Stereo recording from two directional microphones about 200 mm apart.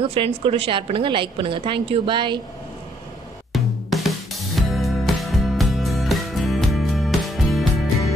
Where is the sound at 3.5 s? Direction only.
Centre (ahead or behind).